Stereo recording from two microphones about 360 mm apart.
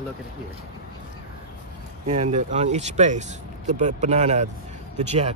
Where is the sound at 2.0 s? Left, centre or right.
Centre.